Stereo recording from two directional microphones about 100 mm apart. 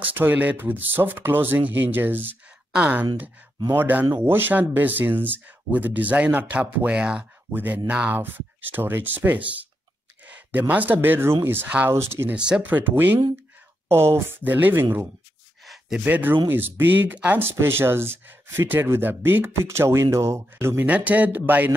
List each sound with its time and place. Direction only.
0.0 s speech: 20° right (ahead or behind)
12.4 s speech: 10° right (ahead or behind)
15.6 s a sound: centre (ahead or behind)
16.0 s speech: 15° right (ahead or behind)